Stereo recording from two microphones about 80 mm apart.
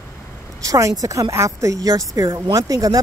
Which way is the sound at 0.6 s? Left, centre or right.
Right.